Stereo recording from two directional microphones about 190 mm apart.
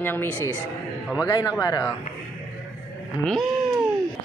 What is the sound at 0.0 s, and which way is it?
A man's voice, 10° left (ahead or behind).